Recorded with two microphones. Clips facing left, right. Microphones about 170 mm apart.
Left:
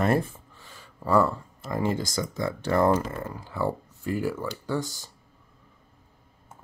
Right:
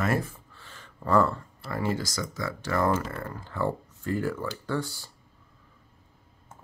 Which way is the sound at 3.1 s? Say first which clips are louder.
Left 1 dB; 10° left (ahead or behind).